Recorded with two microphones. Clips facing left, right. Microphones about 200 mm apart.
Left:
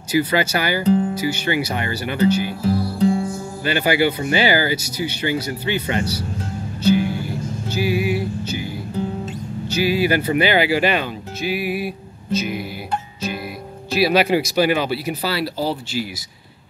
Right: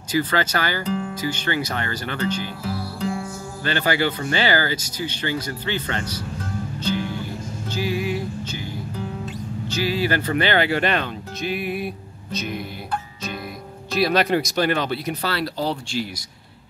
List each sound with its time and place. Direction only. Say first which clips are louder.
0.1 s speech: left 3 dB; 10° left (ahead or behind)
0.8 s speech: left 9 dB; 35° left (ahead or behind)
1.1 s speech: left 4 dB; 10° left (ahead or behind)
3.0 s music: left 9 dB; 30° left (ahead or behind)
3.6 s speech: left 4 dB; 10° left (ahead or behind)
6.8 s music: left 9 dB; 10° left (ahead or behind)
9.7 s speech: left 4 dB; 10° left (ahead or behind)
13.9 s speech: left 3 dB; 5° left (ahead or behind)